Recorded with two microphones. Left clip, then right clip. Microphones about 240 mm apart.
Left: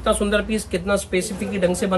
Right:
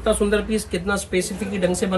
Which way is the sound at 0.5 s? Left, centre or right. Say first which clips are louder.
Left 2 dB; centre.